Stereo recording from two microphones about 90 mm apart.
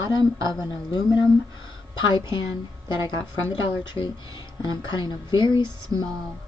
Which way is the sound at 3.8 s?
60° left (ahead or behind).